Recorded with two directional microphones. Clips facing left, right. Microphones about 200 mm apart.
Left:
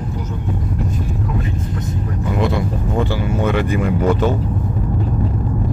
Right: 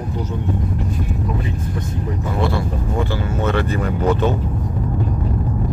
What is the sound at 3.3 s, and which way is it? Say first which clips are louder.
Speech: left 2 dB; 15° left (ahead or behind).